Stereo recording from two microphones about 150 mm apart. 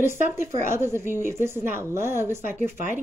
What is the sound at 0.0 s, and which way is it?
Speech, 15° right (ahead or behind).